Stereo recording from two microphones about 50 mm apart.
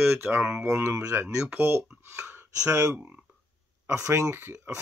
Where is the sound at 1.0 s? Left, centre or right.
Right.